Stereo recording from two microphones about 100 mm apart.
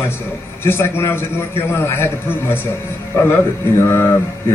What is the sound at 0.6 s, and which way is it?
A man's voice, 25° left (ahead or behind).